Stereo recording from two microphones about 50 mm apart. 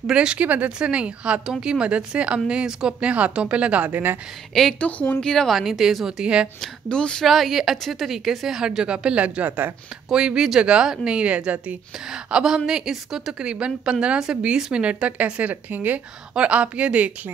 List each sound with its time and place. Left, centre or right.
0.1 s speech: centre
1.4 s a woman's voice: centre
3.9 s speech: right
4.7 s speech: left
5.2 s a woman's voice: centre
5.5 s speech: centre
6.2 s speech: centre
6.6 s a woman's voice: centre
7.2 s a woman's voice: centre; by 9.7 s right
10.0 s a woman's voice: centre
12.1 s a woman's voice: centre
13.4 s speech: centre
15.5 s speech: right
16.3 s speech: right